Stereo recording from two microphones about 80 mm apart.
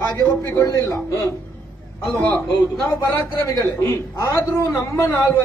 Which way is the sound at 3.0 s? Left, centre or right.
Left.